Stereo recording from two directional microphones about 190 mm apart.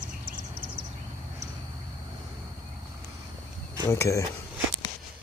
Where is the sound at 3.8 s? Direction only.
15° left (ahead or behind).